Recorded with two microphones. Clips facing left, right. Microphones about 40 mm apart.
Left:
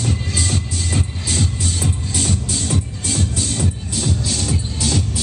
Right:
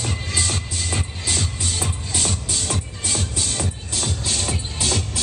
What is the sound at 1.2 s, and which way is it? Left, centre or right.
Music, centre.